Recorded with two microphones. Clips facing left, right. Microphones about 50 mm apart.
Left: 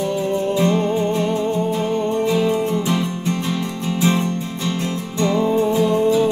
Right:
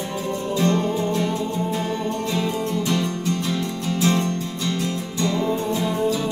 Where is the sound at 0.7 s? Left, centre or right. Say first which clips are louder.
Left 3 dB; left.